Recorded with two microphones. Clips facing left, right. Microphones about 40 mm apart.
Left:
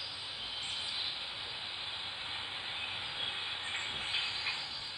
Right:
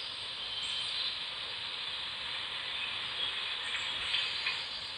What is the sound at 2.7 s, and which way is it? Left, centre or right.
Train, right.